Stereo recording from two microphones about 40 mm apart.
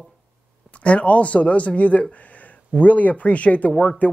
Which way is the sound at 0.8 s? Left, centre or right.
Left.